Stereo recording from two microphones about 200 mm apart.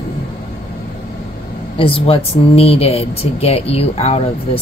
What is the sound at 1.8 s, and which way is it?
Speech, 25° left (ahead or behind).